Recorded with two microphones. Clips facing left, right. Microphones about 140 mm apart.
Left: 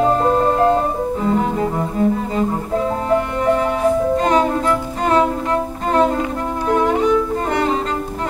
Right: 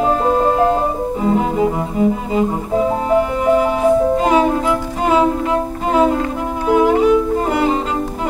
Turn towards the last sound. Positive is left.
turn(degrees=-5)  # may be behind; listen again after turning